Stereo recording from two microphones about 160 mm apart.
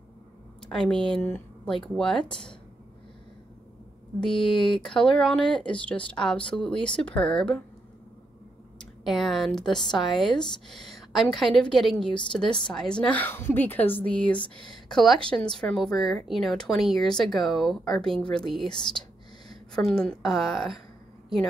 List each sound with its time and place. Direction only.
0.7 s speech: 5° left (ahead or behind)
4.2 s speech: centre (ahead or behind)
8.7 s speech: centre (ahead or behind)